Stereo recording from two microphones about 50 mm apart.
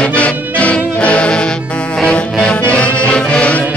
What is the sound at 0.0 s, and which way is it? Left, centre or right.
Music, left.